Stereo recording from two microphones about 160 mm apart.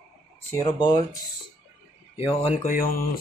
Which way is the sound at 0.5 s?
25° left (ahead or behind).